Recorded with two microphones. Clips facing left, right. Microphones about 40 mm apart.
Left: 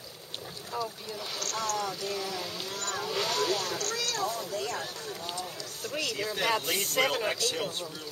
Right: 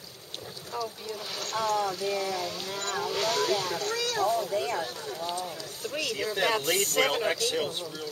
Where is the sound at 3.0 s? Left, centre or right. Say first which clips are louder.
Right 2 dB; centre.